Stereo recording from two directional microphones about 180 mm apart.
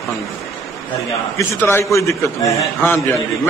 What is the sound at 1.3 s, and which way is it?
A man's voice, 15° left (ahead or behind).